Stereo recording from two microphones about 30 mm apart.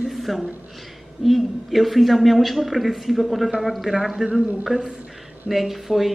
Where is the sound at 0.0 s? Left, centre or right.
Centre.